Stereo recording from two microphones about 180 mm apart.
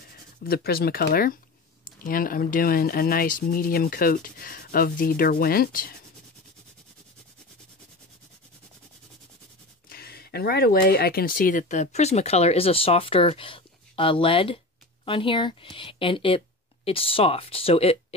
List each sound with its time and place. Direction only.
0.4 s speech: 55° left (ahead or behind)
9.8 s speech: 60° left (ahead or behind); by 17.9 s 30° left (ahead or behind)